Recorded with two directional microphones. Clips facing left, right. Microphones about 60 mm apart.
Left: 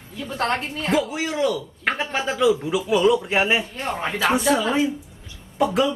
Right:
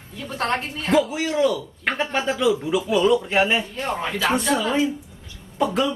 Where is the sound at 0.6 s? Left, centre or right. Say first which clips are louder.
Right 2 dB; centre.